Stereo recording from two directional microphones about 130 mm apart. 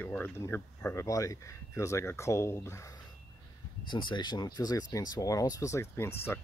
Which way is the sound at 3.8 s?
35° left (ahead or behind).